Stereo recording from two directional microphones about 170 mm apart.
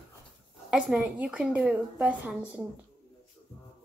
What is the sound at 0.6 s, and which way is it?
A woman's voice, 5° right (ahead or behind).